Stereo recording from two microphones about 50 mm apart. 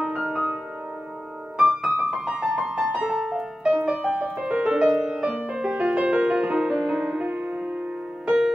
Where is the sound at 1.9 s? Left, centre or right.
Centre.